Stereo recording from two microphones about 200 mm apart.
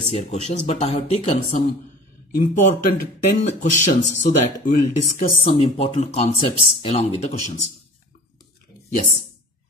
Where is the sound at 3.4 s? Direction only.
35° left (ahead or behind).